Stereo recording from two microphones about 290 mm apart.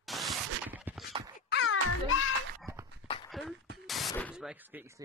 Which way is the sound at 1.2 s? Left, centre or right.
Centre.